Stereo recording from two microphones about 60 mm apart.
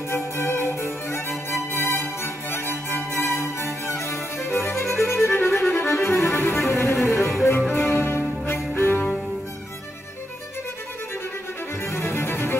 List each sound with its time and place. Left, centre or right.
0.1 s music: left
11.8 s music: left